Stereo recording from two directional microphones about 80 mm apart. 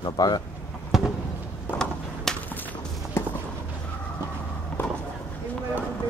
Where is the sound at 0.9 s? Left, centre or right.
Centre.